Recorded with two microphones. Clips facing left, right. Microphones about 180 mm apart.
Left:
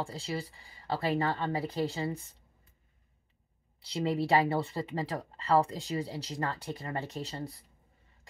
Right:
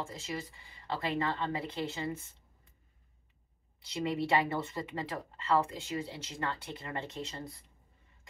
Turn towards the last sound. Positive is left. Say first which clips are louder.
# left 3 dB
turn(degrees=35)  # may be behind; listen again after turning